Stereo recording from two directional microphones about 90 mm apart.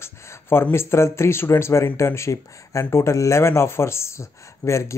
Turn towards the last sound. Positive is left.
turn(degrees=35)  # may be behind; listen again after turning